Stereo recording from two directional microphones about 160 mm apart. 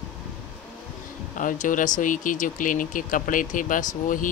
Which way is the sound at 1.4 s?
55° left (ahead or behind).